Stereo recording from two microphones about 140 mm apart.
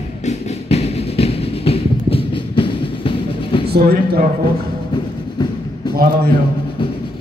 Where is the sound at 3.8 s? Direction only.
90° right.